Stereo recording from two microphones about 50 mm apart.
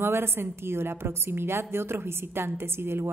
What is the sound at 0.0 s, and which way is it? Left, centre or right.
A woman's voice, right.